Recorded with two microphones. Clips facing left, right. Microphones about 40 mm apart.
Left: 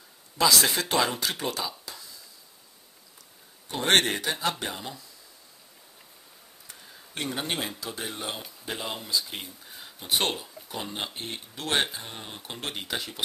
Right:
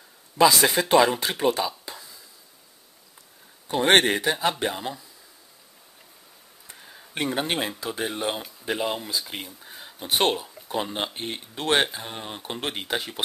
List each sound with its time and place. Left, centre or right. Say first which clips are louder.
0.4 s speech: right 5 dB; right
0.7 s speech: right 7 dB; centre
3.7 s speech: right 4 dB; centre
6.7 s a sound: right 5 dB; right
7.8 s speech: right 7 dB; right
11.7 s speech: right 5 dB; centre